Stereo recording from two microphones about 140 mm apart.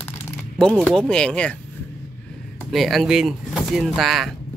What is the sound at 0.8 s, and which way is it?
Speech, 5° left (ahead or behind).